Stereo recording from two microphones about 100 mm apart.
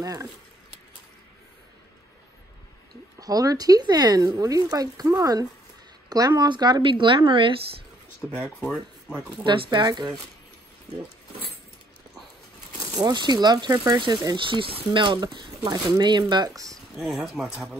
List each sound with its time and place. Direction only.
0.0 s speech: 35° right (ahead or behind)
2.9 s speech: 40° right (ahead or behind); by 7.5 s 60° right (ahead or behind)
8.4 s speech: 5° right (ahead or behind)
9.4 s speech: 50° right (ahead or behind)
12.7 s speech: 45° right (ahead or behind); by 14.9 s 65° right (ahead or behind)
14.9 s speech: 50° right (ahead or behind)
16.9 s speech: 5° right (ahead or behind)